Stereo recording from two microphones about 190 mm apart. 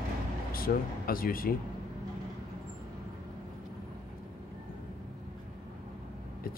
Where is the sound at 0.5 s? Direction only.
50° left (ahead or behind).